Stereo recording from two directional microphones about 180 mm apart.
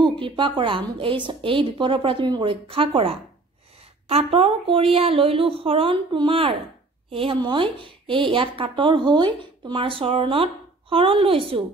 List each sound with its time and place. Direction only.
0.0 s a woman's voice: 30° right (ahead or behind)